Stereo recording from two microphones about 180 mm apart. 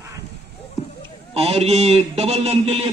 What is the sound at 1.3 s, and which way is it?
A man's voice, 35° right (ahead or behind).